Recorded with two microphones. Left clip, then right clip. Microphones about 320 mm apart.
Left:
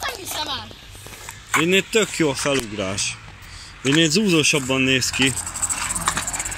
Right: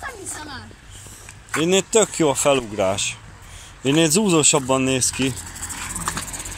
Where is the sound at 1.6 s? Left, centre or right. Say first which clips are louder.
Right 4 dB; right.